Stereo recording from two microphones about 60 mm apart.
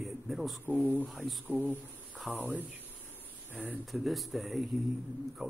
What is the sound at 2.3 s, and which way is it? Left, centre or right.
Speech, right.